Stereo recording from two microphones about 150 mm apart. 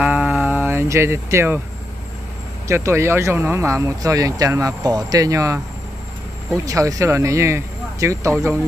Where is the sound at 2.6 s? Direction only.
20° right (ahead or behind).